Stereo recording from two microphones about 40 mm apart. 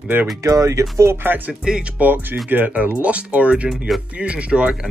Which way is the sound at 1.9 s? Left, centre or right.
Right.